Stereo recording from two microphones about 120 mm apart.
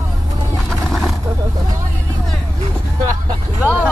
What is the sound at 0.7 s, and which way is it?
Vehicle, centre (ahead or behind).